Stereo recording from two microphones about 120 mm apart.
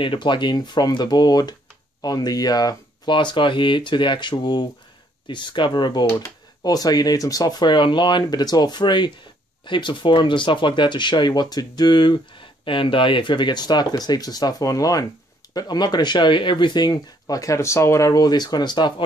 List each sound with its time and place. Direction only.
0.0 s speech: 40° left (ahead or behind)